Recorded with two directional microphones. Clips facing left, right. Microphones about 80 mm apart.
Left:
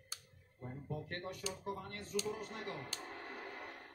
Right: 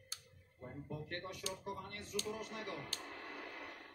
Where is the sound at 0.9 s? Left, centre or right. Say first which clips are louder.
Left 2 dB; left.